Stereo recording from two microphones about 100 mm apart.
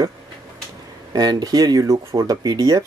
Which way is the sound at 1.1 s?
40° right (ahead or behind).